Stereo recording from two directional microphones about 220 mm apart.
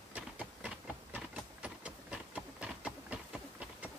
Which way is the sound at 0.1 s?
5° right (ahead or behind).